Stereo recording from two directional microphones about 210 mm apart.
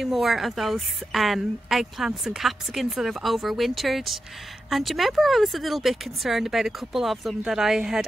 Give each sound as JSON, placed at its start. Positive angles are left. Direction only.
{"t": 0.0, "sound": "speech", "side_deg": 0}